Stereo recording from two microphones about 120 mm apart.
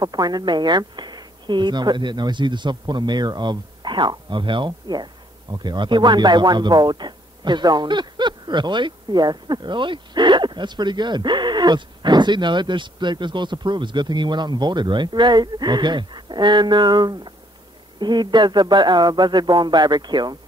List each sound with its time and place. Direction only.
0.0 s speech: 35° right (ahead or behind)